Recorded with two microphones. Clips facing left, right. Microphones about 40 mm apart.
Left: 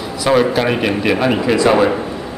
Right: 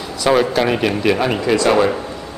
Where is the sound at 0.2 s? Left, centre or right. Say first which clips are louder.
Left 1 dB; centre.